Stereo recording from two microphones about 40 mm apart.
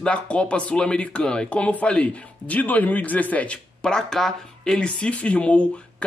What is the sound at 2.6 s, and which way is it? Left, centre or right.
Speech, left.